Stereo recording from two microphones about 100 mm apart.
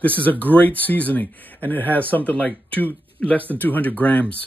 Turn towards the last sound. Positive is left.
turn(degrees=15)  # may be behind; listen again after turning